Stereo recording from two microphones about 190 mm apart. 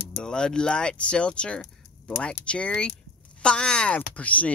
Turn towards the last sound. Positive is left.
turn(degrees=10)  # may be behind; listen again after turning